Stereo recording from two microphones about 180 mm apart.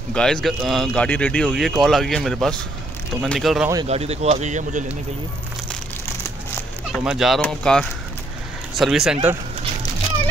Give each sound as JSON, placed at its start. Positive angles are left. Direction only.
{"t": 0.1, "sound": "speech", "side_deg": 5}
{"t": 3.8, "sound": "speech", "side_deg": -35}
{"t": 7.1, "sound": "speech", "side_deg": 0}